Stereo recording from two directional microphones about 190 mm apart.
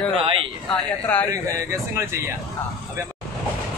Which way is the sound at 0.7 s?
10° left (ahead or behind).